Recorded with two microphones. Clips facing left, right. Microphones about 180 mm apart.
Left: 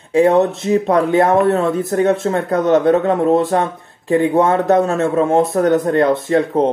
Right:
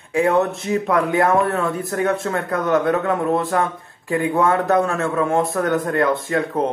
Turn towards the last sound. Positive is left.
turn(degrees=30)  # may be behind; listen again after turning